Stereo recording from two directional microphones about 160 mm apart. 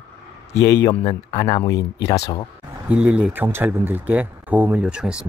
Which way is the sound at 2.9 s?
5° right (ahead or behind).